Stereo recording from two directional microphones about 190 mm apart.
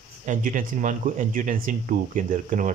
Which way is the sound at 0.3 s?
45° right (ahead or behind).